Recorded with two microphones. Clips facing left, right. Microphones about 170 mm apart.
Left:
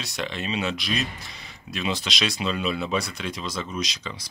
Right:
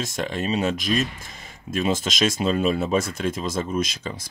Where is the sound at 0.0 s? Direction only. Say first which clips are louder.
Right 5 dB; 45° right (ahead or behind).